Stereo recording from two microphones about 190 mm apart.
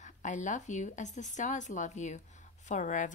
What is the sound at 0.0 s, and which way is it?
Speech, 40° left (ahead or behind).